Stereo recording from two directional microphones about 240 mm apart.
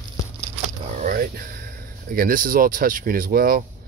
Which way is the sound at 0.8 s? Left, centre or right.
Right.